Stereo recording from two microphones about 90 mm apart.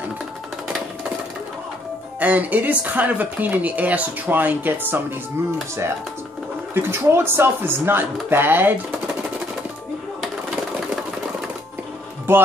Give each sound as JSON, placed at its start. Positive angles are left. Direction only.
{"t": 2.1, "sound": "speech", "side_deg": -15}
{"t": 6.7, "sound": "speech", "side_deg": -25}
{"t": 12.3, "sound": "speech", "side_deg": -25}